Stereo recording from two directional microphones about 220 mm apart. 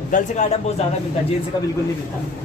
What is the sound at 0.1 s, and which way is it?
Speech, 35° left (ahead or behind).